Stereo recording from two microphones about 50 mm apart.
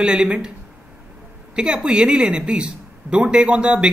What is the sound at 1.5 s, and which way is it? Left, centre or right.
A man's voice, centre.